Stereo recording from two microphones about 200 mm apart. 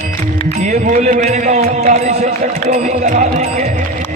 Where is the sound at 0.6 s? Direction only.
35° right (ahead or behind).